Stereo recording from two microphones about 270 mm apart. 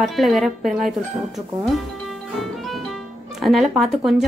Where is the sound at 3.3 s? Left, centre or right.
Centre.